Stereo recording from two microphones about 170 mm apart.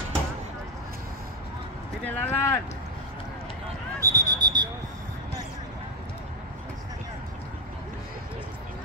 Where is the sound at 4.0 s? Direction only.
20° right (ahead or behind).